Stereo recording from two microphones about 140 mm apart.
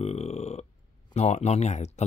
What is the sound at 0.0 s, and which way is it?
Burping, 50° left (ahead or behind).